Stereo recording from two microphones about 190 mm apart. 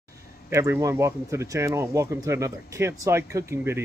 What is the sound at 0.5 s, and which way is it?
Speech, 15° right (ahead or behind).